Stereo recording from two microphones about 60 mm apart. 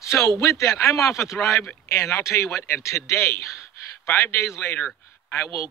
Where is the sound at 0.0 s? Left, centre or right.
Left.